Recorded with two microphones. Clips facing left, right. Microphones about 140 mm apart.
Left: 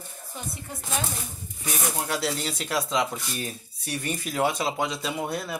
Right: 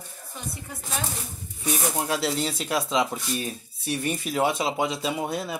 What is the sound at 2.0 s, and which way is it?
Speech, 25° right (ahead or behind).